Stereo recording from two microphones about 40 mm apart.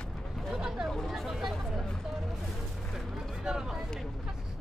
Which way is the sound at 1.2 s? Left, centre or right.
Centre.